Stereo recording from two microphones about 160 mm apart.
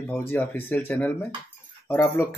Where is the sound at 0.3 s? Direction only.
15° left (ahead or behind).